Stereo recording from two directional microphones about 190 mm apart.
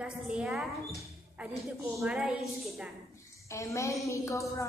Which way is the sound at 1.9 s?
Centre (ahead or behind).